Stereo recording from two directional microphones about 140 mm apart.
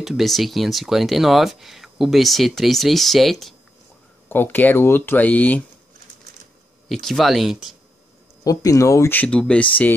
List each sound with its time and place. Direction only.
0.0 s speech: centre (ahead or behind)
4.3 s speech: 15° left (ahead or behind)
6.9 s speech: centre (ahead or behind)
8.5 s speech: 25° left (ahead or behind); by 9.7 s 5° left (ahead or behind)